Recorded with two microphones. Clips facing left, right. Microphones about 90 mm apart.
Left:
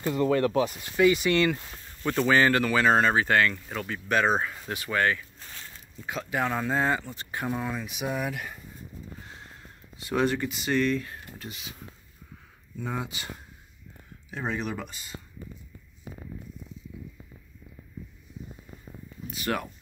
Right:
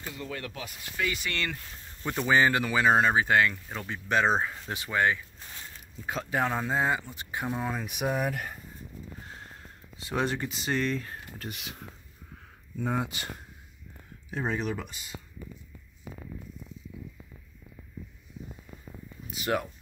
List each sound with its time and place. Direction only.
0.0 s speech: 50° left (ahead or behind); by 0.8 s 35° left (ahead or behind)
0.9 s speech: 20° left (ahead or behind)
2.0 s speech: 15° right (ahead or behind)
6.0 s speech: 35° right (ahead or behind); by 7.4 s 15° right (ahead or behind)
7.5 s speech: 30° right (ahead or behind)
7.8 s speech: 55° right (ahead or behind)
9.9 s speech: 30° right (ahead or behind)
11.4 s speech: 70° right (ahead or behind)
12.8 s speech: 50° right (ahead or behind)
19.3 s speech: 20° right (ahead or behind)